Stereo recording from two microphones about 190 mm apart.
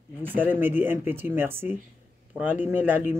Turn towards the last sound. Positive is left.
turn(degrees=-10)  # may be behind; listen again after turning